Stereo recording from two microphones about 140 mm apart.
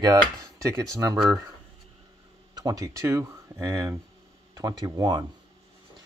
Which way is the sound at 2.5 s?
25° right (ahead or behind).